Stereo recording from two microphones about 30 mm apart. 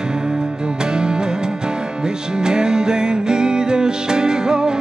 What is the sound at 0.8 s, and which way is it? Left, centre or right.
Music, right.